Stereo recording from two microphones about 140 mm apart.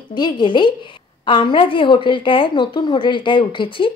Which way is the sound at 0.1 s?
30° left (ahead or behind).